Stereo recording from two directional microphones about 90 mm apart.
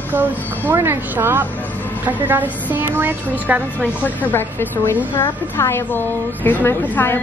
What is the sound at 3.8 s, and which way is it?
A woman's voice, 20° left (ahead or behind).